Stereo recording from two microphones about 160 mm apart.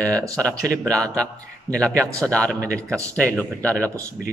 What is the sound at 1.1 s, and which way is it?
Speech, 20° right (ahead or behind).